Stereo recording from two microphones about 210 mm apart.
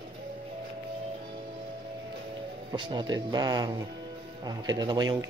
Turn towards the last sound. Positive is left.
turn(degrees=-20)  # may be behind; listen again after turning